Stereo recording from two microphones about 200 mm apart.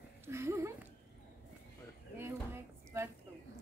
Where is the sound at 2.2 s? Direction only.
10° right (ahead or behind).